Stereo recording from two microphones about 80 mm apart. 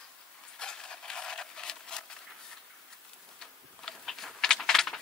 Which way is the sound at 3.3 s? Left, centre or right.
Centre.